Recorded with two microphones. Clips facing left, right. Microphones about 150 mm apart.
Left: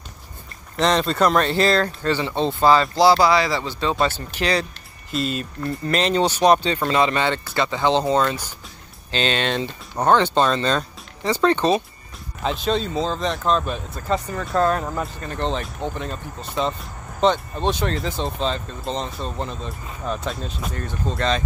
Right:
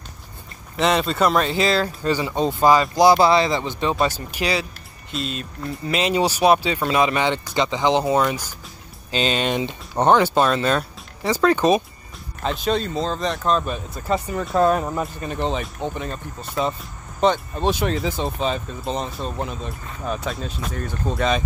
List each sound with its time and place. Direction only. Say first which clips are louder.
0.7 s speech: even; 5° right (ahead or behind)
5.1 s speech: left 4 dB; centre (ahead or behind)